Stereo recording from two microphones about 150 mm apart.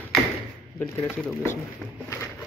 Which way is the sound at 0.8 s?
10° left (ahead or behind).